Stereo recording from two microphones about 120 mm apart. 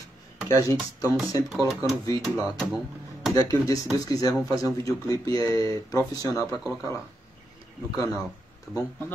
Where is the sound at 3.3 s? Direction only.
30° left (ahead or behind).